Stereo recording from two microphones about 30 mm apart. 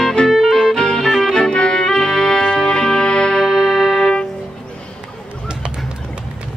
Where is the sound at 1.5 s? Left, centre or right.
Left.